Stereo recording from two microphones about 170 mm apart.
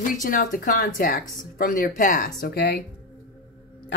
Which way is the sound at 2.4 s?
70° left (ahead or behind).